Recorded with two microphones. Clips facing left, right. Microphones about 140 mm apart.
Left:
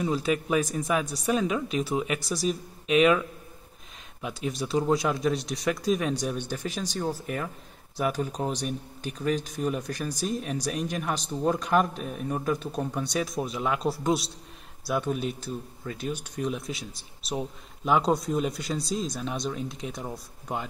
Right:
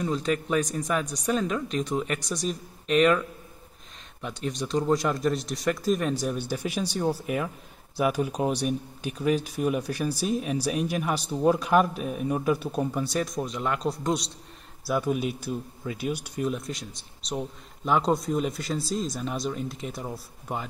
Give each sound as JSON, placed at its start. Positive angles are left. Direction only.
{"t": 0.0, "sound": "speech", "side_deg": 5}